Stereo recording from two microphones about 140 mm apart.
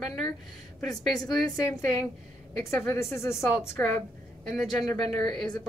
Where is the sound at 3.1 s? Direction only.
20° left (ahead or behind).